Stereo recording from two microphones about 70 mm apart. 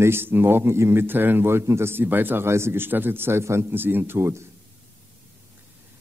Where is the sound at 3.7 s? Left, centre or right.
Right.